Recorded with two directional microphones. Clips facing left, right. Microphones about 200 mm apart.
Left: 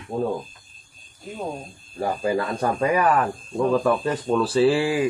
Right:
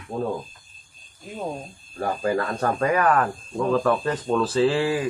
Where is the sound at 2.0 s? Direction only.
10° left (ahead or behind).